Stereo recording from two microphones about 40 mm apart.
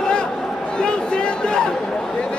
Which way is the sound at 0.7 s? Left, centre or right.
Left.